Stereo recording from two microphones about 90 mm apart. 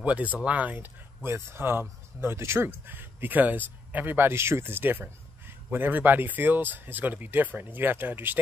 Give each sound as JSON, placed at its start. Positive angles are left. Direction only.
{"t": 0.0, "sound": "speech", "side_deg": -15}